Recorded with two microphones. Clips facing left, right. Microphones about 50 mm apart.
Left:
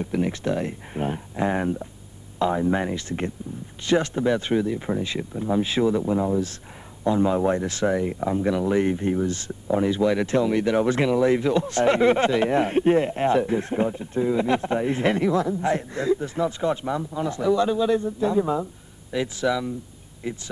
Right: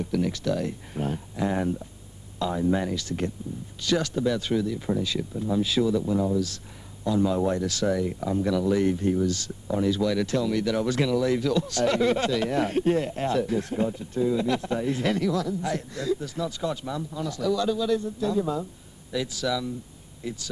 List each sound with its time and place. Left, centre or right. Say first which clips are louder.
0.0 s speech: left 2 dB; left